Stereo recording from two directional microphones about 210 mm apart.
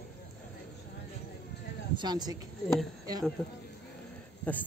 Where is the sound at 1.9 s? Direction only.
20° right (ahead or behind).